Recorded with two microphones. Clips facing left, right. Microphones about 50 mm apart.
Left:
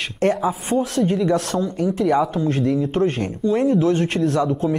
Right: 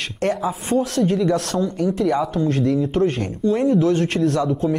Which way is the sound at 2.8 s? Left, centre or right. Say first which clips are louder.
Even; left.